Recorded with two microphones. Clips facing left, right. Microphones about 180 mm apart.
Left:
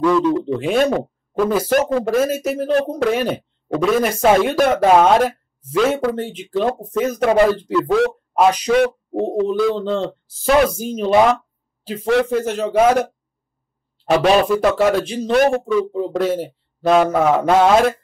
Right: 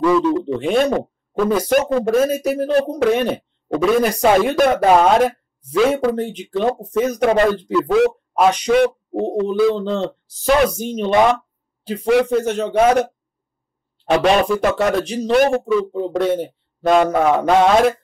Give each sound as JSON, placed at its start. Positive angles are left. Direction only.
{"t": 0.5, "sound": "speech", "side_deg": 0}
{"t": 14.0, "sound": "speech", "side_deg": 0}